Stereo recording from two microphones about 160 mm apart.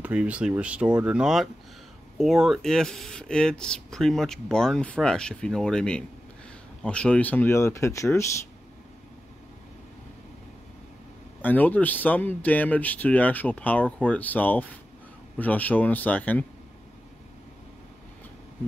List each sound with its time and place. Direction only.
0.0 s speech: 10° right (ahead or behind); by 8.3 s 20° left (ahead or behind)
11.4 s speech: 10° left (ahead or behind)